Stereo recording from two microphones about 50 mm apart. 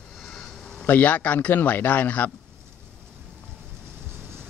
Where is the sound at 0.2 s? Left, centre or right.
Centre.